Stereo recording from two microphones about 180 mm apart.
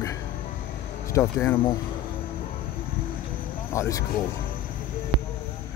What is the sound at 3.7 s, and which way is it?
Speech, 15° left (ahead or behind).